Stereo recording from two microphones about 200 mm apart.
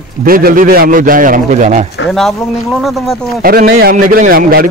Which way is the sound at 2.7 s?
Centre (ahead or behind).